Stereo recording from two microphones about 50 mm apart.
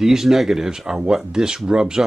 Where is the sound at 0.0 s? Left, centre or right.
Centre.